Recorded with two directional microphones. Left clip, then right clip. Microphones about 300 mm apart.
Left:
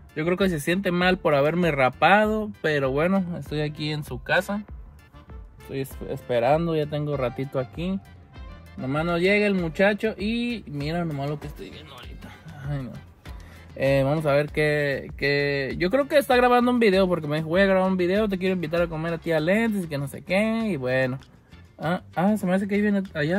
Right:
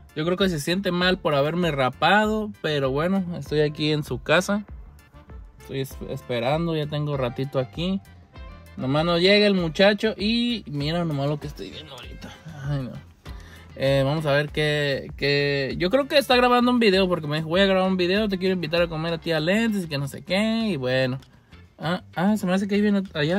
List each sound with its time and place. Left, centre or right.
0.2 s speech: centre
3.5 s speech: right
6.0 s speech: centre
13.7 s speech: centre
22.7 s speech: centre